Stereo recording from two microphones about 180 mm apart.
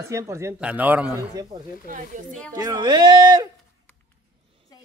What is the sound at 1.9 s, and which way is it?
Speech, 45° right (ahead or behind).